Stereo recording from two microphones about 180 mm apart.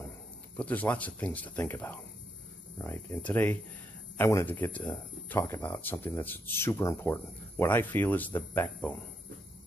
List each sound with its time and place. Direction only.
0.6 s speech: 10° left (ahead or behind)